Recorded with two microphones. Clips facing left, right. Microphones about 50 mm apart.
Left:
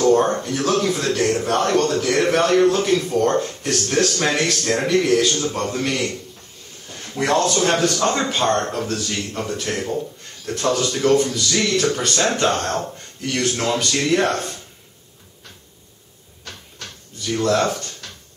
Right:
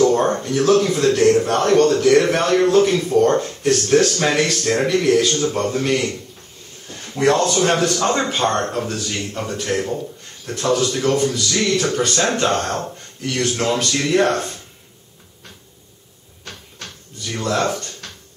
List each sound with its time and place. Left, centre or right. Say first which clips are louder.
0.0 s a sound: even; centre
0.4 s speech: right 4 dB; centre
7.2 s speech: right 2 dB; centre
17.3 s speech: left 2 dB; centre